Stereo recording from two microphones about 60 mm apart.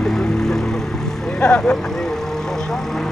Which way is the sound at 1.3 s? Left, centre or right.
Centre.